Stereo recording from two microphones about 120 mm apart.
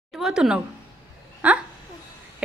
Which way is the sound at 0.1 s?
5° right (ahead or behind).